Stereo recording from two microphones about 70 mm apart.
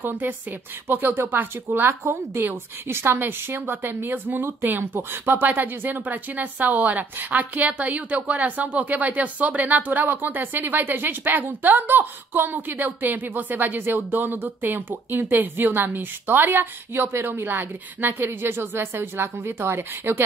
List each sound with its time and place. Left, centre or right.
0.0 s speech: right